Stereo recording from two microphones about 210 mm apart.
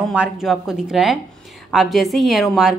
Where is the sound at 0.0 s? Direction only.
Centre (ahead or behind).